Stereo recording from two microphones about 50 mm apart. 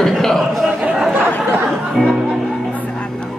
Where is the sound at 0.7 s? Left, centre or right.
Centre.